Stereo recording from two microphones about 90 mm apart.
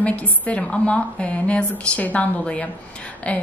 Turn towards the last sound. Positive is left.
turn(degrees=15)  # may be behind; listen again after turning